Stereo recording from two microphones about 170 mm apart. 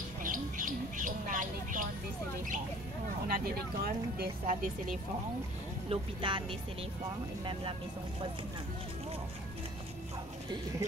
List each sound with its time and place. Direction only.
0.2 s squawk: 50° right (ahead or behind)
3.3 s speech: 60° right (ahead or behind)
5.9 s speech: 30° right (ahead or behind)